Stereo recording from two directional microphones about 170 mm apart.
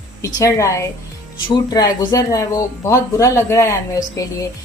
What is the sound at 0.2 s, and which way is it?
Speech, 20° left (ahead or behind).